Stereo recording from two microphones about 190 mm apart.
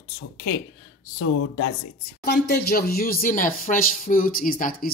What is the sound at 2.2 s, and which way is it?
Speech, 60° left (ahead or behind).